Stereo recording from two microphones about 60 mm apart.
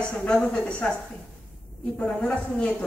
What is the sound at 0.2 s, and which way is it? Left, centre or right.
Speech, centre.